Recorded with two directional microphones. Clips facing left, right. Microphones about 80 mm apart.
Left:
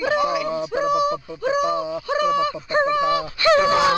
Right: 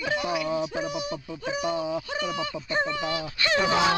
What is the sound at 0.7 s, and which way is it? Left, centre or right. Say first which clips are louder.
Honk: left 10 dB; left.